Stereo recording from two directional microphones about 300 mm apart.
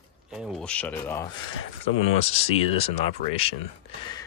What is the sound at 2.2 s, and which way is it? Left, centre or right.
Speech, centre.